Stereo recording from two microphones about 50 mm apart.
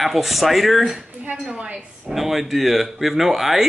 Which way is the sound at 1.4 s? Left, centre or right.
Centre.